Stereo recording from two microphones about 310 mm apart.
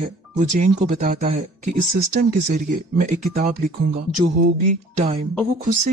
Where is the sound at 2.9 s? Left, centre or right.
Right.